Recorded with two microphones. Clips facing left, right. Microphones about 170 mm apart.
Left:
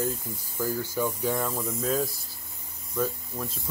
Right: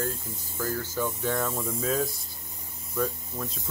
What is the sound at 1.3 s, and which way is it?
Speech, centre (ahead or behind).